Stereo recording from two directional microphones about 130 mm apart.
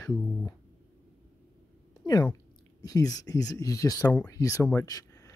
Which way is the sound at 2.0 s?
30° left (ahead or behind).